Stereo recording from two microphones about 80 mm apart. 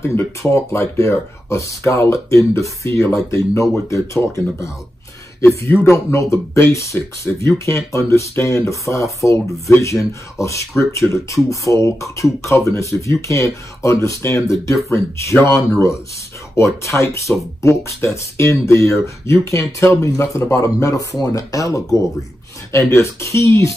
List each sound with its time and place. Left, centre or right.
0.0 s speech: left